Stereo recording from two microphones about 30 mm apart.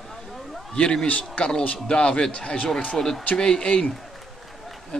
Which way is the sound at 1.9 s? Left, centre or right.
Left.